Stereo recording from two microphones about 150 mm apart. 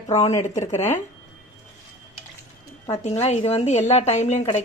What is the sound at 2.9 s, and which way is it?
Speech, 45° left (ahead or behind).